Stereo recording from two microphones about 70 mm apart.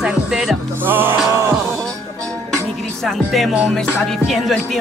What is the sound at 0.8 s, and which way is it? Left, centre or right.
Music, right.